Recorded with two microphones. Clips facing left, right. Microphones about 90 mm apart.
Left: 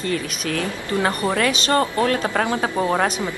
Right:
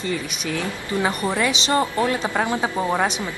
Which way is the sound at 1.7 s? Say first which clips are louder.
Left 2 dB; 15° right (ahead or behind).